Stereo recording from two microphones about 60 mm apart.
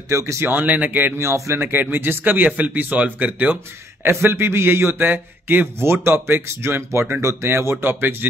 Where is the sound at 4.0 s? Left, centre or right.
Right.